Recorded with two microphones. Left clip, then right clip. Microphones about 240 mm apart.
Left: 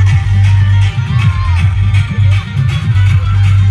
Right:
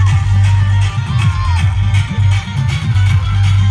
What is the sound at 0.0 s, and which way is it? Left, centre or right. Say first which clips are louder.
Music: left 1 dB; right.